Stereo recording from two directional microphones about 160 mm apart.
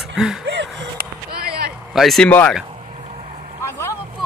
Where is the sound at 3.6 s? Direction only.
15° left (ahead or behind).